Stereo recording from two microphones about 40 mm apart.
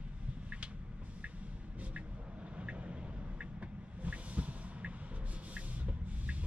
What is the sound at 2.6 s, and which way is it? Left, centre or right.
Vehicle, right.